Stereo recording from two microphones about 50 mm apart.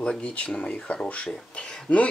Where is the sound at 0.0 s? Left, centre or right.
Left.